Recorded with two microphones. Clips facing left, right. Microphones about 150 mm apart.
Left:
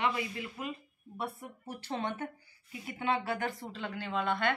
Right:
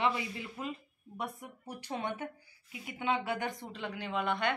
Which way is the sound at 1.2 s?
15° right (ahead or behind).